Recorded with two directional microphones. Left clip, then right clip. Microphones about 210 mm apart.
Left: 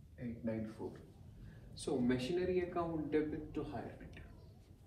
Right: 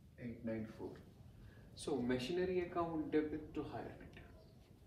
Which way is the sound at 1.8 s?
10° right (ahead or behind).